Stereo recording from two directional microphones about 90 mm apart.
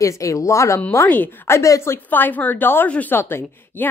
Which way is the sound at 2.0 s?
20° left (ahead or behind).